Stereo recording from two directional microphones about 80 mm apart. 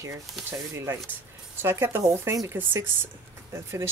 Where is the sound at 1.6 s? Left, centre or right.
Right.